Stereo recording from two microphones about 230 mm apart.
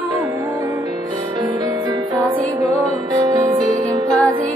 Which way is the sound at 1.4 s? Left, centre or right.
Centre.